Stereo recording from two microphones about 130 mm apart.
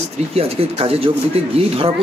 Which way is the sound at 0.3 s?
50° right (ahead or behind).